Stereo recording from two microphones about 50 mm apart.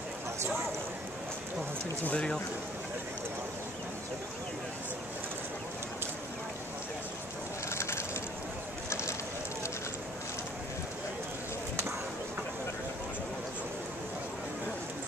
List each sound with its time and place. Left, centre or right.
2.0 s speech: left
7.7 s vehicle: left